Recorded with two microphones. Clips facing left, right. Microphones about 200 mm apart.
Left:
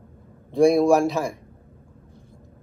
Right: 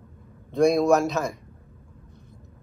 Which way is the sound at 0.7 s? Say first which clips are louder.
Left 2 dB; 15° left (ahead or behind).